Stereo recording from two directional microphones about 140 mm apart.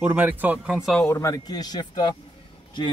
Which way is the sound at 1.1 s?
25° left (ahead or behind).